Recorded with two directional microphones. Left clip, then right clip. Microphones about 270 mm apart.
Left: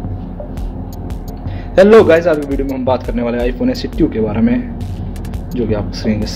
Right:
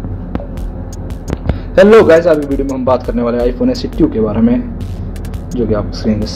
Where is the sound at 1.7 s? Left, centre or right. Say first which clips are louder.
Right 1 dB; centre.